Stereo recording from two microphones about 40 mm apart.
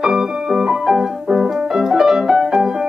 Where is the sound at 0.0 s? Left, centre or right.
Centre.